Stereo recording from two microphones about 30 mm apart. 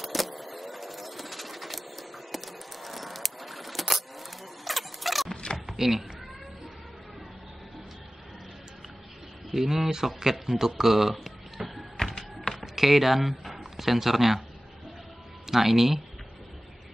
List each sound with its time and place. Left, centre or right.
0.0 s a sound: centre
5.8 s speech: centre
9.5 s speech: centre
10.8 s music: centre
12.0 s music: left
12.5 s computer keyboard: centre
13.7 s speech: centre
15.4 s speech: centre